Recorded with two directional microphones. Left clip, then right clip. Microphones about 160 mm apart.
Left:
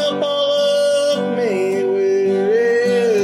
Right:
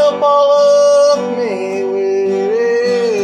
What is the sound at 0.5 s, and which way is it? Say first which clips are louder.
Music: right 4 dB; 55° left (ahead or behind).